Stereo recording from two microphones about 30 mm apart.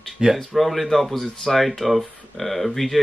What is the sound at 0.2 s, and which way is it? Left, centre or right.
Speech, right.